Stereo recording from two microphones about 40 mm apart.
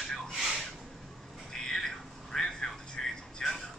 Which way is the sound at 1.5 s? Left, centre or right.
Centre.